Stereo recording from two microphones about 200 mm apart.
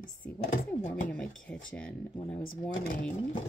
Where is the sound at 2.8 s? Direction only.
45° left (ahead or behind).